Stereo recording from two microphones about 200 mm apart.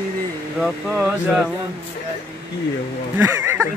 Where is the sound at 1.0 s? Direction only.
5° right (ahead or behind).